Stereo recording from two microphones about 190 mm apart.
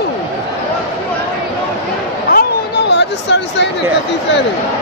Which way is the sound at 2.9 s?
65° left (ahead or behind).